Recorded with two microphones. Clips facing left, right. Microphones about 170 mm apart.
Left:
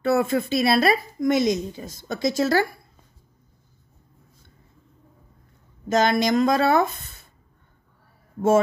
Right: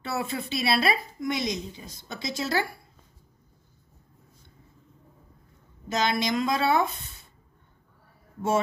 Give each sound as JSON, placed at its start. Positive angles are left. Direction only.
{"t": 0.0, "sound": "a woman's voice", "side_deg": 45}
{"t": 5.9, "sound": "a woman's voice", "side_deg": 50}